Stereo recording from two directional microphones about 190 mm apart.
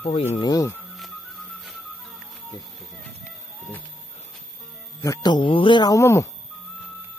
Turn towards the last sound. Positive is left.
turn(degrees=15)  # may be behind; listen again after turning